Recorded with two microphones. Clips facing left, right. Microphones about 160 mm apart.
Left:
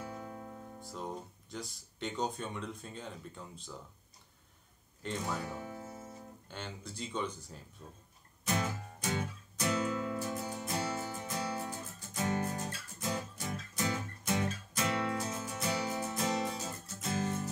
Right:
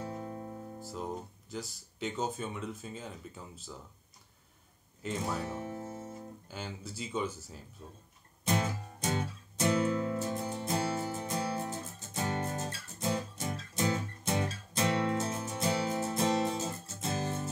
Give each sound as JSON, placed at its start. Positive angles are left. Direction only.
{"t": 0.0, "sound": "music", "side_deg": -30}
{"t": 0.7, "sound": "speech", "side_deg": -5}
{"t": 5.0, "sound": "speech", "side_deg": -5}
{"t": 5.5, "sound": "music", "side_deg": -25}
{"t": 6.4, "sound": "speech", "side_deg": -5}
{"t": 8.5, "sound": "music", "side_deg": -25}